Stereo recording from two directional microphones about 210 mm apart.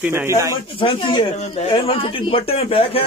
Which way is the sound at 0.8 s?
25° left (ahead or behind).